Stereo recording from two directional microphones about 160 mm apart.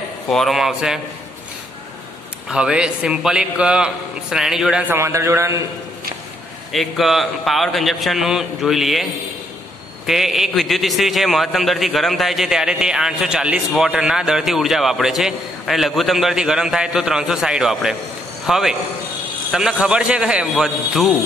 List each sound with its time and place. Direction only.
0.3 s a man's voice: centre (ahead or behind)
2.4 s a man's voice: 5° right (ahead or behind)
6.7 s a man's voice: centre (ahead or behind)
10.0 s a man's voice: centre (ahead or behind)